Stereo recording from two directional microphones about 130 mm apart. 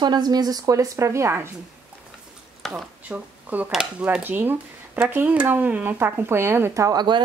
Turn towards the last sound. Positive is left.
turn(degrees=-30)  # may be behind; listen again after turning